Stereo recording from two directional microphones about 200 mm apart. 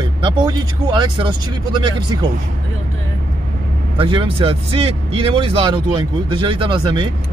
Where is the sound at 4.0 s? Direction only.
25° right (ahead or behind).